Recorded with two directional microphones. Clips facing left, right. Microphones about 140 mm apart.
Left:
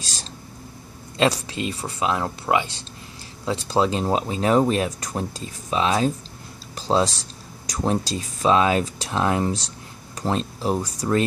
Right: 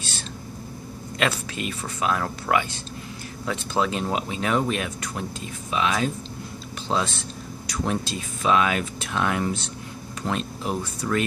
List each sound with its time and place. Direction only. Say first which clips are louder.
1.1 s speech: left 5 dB; 30° left (ahead or behind)